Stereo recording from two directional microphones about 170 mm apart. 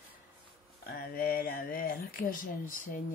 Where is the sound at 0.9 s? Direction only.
60° left (ahead or behind).